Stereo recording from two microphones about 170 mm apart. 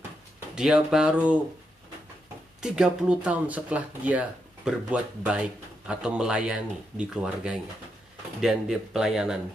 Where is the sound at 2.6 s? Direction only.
5° right (ahead or behind).